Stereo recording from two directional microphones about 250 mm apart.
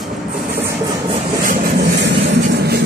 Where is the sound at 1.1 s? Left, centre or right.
Right.